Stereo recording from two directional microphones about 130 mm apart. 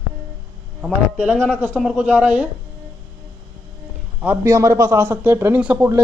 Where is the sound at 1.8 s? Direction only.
5° right (ahead or behind).